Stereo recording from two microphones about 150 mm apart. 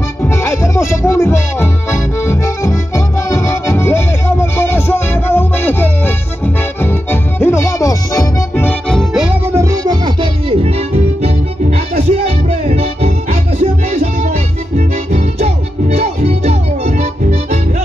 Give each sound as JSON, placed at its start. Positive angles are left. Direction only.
{"t": 0.2, "sound": "music", "side_deg": 20}
{"t": 8.8, "sound": "music", "side_deg": 0}
{"t": 9.5, "sound": "music", "side_deg": -20}